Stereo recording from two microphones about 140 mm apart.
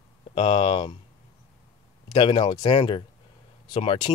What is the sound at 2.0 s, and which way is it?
Speech, 35° left (ahead or behind).